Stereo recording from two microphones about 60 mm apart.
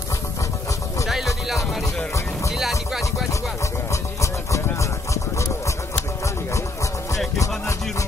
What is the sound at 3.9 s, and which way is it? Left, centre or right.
Music, left.